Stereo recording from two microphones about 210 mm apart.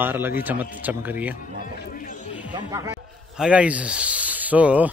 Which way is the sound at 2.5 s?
15° right (ahead or behind).